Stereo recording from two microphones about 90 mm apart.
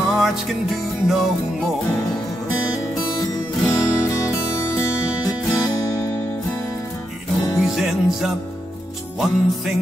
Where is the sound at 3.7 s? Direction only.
35° left (ahead or behind).